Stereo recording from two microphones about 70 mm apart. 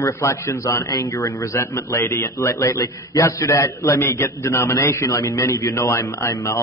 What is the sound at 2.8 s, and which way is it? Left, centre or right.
A man's voice, left.